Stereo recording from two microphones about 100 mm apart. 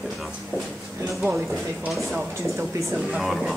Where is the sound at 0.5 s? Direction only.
25° right (ahead or behind).